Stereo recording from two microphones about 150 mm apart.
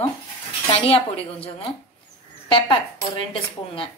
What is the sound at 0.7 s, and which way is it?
Speech, 40° left (ahead or behind).